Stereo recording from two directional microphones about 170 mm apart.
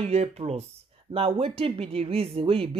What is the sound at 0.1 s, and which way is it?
Speech, 40° right (ahead or behind).